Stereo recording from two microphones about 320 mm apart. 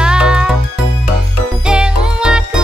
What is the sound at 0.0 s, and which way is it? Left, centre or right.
Music, centre.